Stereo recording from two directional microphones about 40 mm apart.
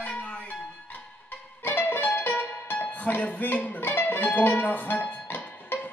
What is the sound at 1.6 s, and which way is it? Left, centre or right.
Music, left.